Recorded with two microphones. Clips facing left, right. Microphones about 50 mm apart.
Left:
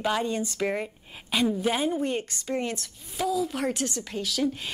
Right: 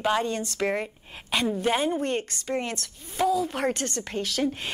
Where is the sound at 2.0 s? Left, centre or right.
Right.